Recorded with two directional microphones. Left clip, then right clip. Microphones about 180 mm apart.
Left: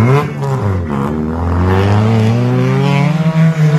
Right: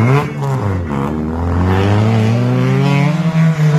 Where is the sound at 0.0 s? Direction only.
35° left (ahead or behind).